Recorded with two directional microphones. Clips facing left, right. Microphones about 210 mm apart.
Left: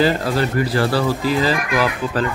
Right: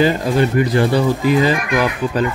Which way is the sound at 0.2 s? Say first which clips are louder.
Right 4 dB; 20° right (ahead or behind).